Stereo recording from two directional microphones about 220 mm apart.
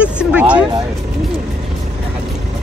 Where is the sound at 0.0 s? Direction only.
5° right (ahead or behind).